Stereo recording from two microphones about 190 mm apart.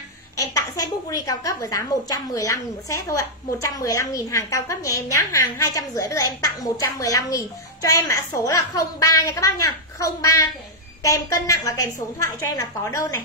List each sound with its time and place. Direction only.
0.6 s a woman's voice: 20° left (ahead or behind)